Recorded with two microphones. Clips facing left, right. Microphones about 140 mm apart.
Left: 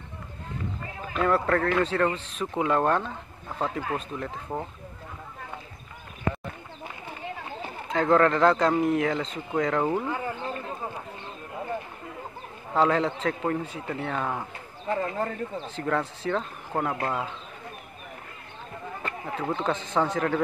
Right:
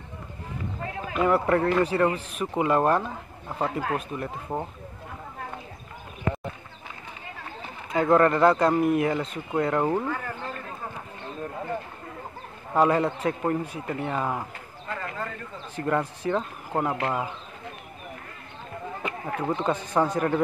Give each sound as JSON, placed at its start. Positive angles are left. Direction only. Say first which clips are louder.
{"t": 1.1, "sound": "speech", "louder": "right 2 dB", "side_deg": -10}
{"t": 7.9, "sound": "speech", "louder": "right 1 dB", "side_deg": -5}
{"t": 10.0, "sound": "speech", "louder": "left 1 dB", "side_deg": 15}
{"t": 12.7, "sound": "speech", "louder": "right 1 dB", "side_deg": -10}
{"t": 14.9, "sound": "a man's voice", "louder": "left 6 dB", "side_deg": 30}
{"t": 15.8, "sound": "speech", "louder": "right 2 dB", "side_deg": -10}
{"t": 19.0, "sound": "speech", "louder": "right 2 dB", "side_deg": -10}